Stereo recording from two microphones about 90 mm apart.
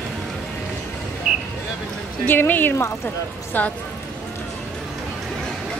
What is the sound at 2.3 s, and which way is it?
A woman's voice, 20° left (ahead or behind).